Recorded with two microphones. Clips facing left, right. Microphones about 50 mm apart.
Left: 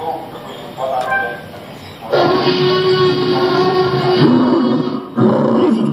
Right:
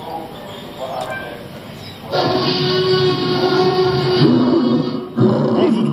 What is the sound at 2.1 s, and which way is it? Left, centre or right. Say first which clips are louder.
Music: left 4 dB; centre.